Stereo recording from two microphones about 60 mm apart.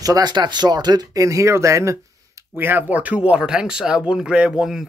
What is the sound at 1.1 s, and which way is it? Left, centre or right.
Speech, right.